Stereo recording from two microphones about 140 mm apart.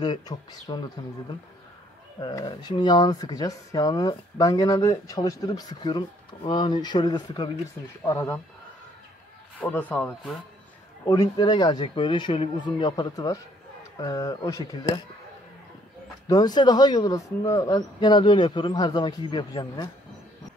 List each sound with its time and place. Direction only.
0.0 s speech: 30° left (ahead or behind)
2.1 s speech: 30° left (ahead or behind)
8.0 s speech: 20° left (ahead or behind)
9.6 s speech: 10° left (ahead or behind)
11.1 s speech: 30° left (ahead or behind)
16.3 s speech: 30° left (ahead or behind)